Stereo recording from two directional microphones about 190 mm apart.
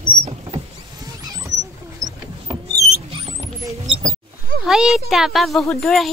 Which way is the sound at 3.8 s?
30° right (ahead or behind).